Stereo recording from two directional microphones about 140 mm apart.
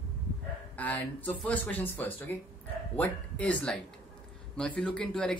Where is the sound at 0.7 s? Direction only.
10° left (ahead or behind).